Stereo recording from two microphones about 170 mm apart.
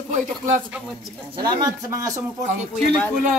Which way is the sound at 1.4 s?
25° right (ahead or behind).